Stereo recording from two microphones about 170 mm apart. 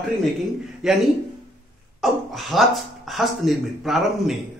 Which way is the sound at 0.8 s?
5° right (ahead or behind).